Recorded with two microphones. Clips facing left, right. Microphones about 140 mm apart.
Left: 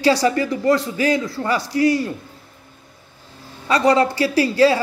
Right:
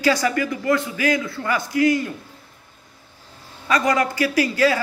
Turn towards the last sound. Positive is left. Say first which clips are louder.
# left 4 dB
turn(degrees=30)  # may be behind; listen again after turning